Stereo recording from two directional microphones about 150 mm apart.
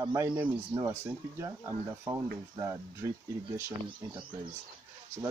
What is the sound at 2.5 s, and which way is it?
Speech, 20° right (ahead or behind).